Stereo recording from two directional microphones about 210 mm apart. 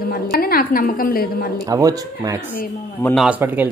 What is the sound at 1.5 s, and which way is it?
Speech, 15° right (ahead or behind).